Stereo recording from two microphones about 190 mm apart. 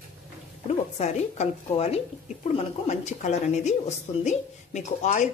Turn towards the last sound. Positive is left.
turn(degrees=40)  # may be behind; listen again after turning